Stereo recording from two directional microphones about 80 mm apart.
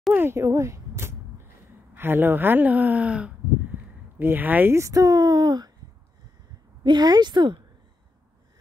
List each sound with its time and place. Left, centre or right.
0.1 s speech: right
0.4 s a sound: right
2.0 s speech: right
4.7 s speech: right
6.8 s speech: right